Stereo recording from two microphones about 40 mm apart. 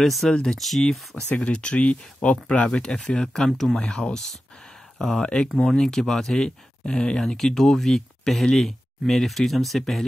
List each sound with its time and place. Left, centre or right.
0.0 s speech: centre
1.3 s speech: left
2.6 s speech: left; by 5.2 s centre
5.2 s speech: left
7.2 s speech: centre